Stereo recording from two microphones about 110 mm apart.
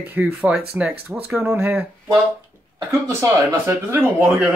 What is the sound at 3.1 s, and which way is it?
Speech, 25° right (ahead or behind).